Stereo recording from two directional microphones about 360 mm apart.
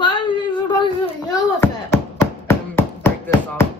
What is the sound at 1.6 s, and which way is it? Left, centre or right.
Chopping, centre.